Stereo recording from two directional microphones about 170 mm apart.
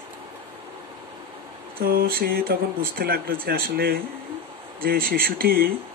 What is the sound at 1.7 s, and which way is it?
Speech, 60° right (ahead or behind).